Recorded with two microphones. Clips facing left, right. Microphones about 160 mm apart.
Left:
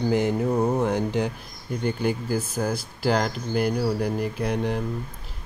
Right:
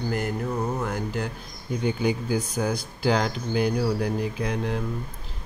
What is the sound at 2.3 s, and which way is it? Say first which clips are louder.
Speech: even; 5° left (ahead or behind).